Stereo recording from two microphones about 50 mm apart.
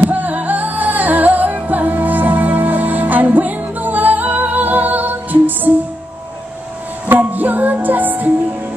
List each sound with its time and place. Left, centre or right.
0.0 s music: right
7.1 s music: right